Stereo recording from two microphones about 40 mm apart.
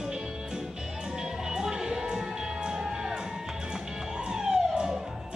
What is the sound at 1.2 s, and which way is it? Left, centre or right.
Music, centre.